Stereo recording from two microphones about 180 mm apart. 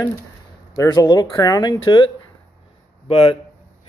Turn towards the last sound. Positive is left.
turn(degrees=30)  # may be behind; listen again after turning